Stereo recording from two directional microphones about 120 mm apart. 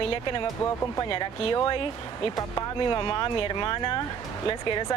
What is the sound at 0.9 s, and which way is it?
Speech, 30° left (ahead or behind).